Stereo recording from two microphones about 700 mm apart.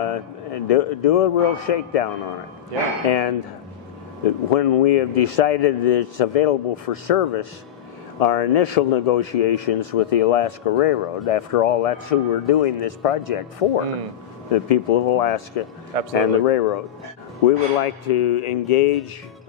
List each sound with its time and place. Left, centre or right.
0.0 s speech: left
3.1 s a man's voice: left
4.5 s a man's voice: left